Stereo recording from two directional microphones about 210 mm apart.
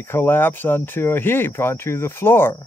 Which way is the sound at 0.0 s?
10° left (ahead or behind).